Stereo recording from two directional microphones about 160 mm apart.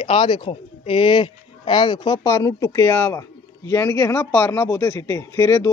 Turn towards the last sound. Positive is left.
turn(degrees=15)  # may be behind; listen again after turning